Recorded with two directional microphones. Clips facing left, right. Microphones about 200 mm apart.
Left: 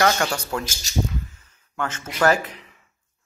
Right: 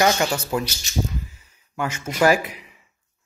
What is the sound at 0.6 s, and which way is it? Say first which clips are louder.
Speech: right 3 dB; 45° left (ahead or behind).